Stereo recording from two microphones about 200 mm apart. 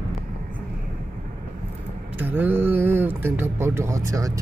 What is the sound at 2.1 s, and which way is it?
Speech, 10° right (ahead or behind).